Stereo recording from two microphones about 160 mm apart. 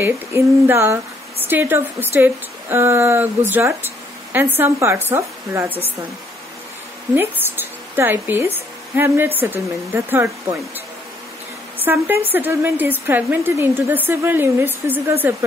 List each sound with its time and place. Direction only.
0.0 s a woman's voice: 15° right (ahead or behind)
7.2 s zipper: 15° right (ahead or behind)
8.5 s a woman's voice: 15° right (ahead or behind)
11.8 s a woman's voice: 15° right (ahead or behind)